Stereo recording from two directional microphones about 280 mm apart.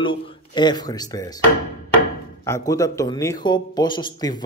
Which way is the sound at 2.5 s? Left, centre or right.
Centre.